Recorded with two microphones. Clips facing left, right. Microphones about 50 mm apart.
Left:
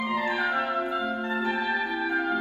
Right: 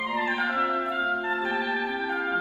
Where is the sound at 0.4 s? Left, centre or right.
Centre.